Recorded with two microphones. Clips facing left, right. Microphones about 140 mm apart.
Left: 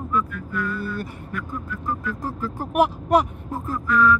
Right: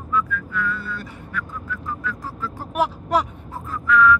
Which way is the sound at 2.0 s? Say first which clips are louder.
Left 2 dB; 50° left (ahead or behind).